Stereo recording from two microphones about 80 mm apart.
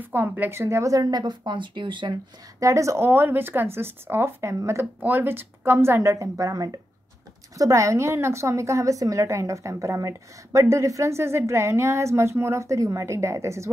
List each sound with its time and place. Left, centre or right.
0.0 s a woman's voice: right
2.6 s a woman's voice: right
3.1 s speech: right
5.0 s speech: right
6.1 s a woman's voice: right